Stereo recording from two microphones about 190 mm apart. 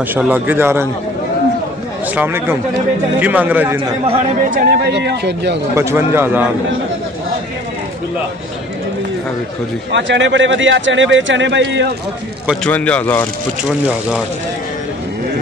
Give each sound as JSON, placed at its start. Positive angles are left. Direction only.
{"t": 0.1, "sound": "a man's voice", "side_deg": -10}
{"t": 2.1, "sound": "a man's voice", "side_deg": -10}
{"t": 4.1, "sound": "speech", "side_deg": -40}
{"t": 4.6, "sound": "speech", "side_deg": -60}
{"t": 5.8, "sound": "a man's voice", "side_deg": -15}
{"t": 9.9, "sound": "speech", "side_deg": -70}
{"t": 12.6, "sound": "speech", "side_deg": 5}